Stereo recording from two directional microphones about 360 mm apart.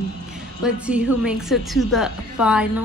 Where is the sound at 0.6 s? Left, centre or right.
Centre.